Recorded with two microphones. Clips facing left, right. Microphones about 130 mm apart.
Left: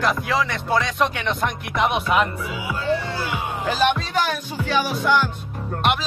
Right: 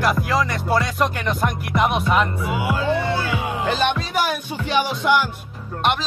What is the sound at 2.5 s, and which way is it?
Speech, 65° right (ahead or behind).